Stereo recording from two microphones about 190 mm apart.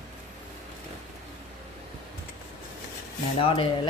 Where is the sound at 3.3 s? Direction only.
30° left (ahead or behind).